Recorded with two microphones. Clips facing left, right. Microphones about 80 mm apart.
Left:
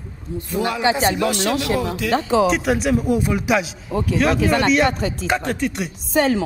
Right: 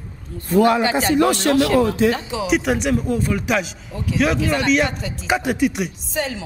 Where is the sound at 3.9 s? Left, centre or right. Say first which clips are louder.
Left 4 dB; left.